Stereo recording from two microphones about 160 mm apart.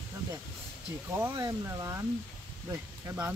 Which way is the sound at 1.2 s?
20° right (ahead or behind).